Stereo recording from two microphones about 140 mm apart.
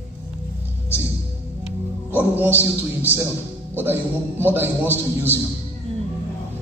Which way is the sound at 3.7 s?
15° right (ahead or behind).